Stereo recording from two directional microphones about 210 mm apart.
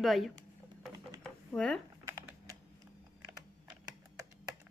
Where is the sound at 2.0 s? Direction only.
15° right (ahead or behind).